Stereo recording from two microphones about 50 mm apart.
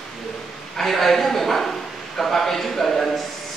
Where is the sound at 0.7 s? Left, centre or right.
Centre.